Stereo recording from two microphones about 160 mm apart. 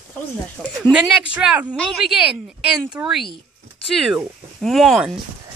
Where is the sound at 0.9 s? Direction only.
5° right (ahead or behind).